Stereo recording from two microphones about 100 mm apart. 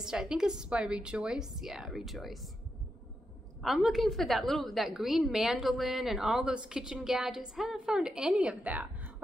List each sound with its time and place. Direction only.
0.0 s a woman's voice: 5° right (ahead or behind)
3.6 s a woman's voice: centre (ahead or behind)